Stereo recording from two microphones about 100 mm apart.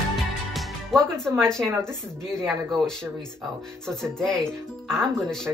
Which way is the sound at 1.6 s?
25° right (ahead or behind).